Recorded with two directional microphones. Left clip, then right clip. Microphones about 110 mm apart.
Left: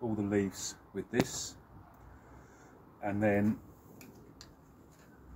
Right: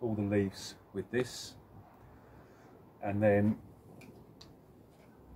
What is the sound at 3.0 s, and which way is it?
Speech, 20° right (ahead or behind).